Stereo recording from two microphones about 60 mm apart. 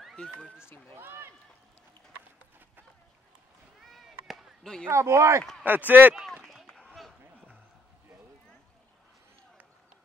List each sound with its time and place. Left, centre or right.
0.1 s speech: centre
0.9 s speech: right
3.8 s cat: centre
4.8 s speech: right
5.6 s speech: right
6.4 s run: centre
6.9 s a sound: centre